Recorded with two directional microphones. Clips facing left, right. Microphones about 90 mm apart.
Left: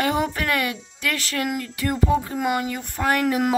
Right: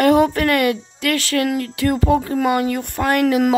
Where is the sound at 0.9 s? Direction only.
70° right (ahead or behind).